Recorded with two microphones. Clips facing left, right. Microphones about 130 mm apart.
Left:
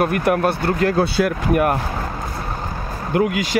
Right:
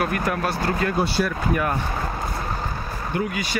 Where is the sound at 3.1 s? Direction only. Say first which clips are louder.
Left 8 dB; 90° left.